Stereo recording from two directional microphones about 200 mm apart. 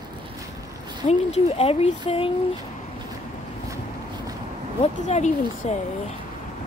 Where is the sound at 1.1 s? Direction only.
30° left (ahead or behind).